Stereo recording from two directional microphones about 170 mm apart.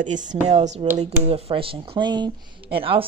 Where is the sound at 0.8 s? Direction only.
35° right (ahead or behind).